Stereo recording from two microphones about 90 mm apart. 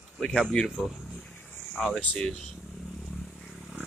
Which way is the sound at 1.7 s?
5° left (ahead or behind).